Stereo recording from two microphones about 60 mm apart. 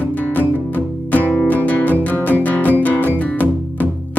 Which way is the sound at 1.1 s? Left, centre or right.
Left.